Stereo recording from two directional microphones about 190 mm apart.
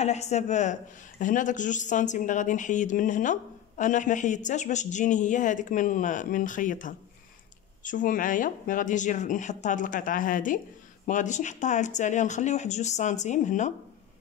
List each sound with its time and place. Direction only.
0.0 s a woman's voice: 35° left (ahead or behind)